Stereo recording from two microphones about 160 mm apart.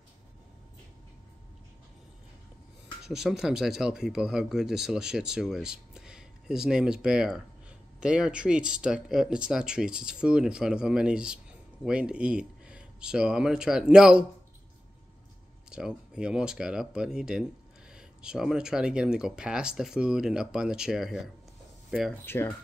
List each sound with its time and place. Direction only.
3.1 s speech: 5° right (ahead or behind)
15.7 s speech: 5° right (ahead or behind)
22.2 s speech: 15° left (ahead or behind)